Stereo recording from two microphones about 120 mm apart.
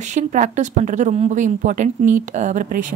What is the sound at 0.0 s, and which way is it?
Speech, 85° right.